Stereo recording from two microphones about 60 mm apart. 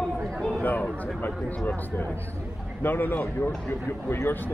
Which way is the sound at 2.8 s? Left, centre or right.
Left.